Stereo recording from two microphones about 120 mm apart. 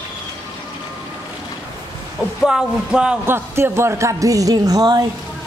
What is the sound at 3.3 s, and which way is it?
Speech, 20° right (ahead or behind).